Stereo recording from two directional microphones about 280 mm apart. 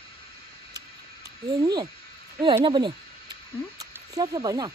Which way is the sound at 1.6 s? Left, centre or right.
Centre.